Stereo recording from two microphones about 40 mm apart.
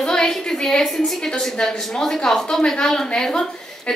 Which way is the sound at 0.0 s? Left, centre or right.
Centre.